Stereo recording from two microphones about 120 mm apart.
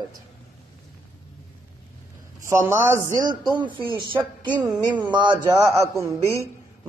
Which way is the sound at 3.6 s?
40° right (ahead or behind).